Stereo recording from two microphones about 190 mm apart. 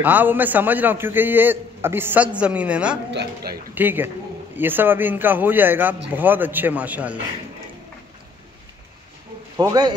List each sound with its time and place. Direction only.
0.0 s a man's voice: 10° right (ahead or behind)
3.1 s a man's voice: 60° right (ahead or behind)
3.7 s a man's voice: 10° right (ahead or behind)
9.6 s a man's voice: 20° right (ahead or behind)